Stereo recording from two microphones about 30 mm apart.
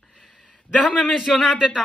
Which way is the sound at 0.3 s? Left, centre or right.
Left.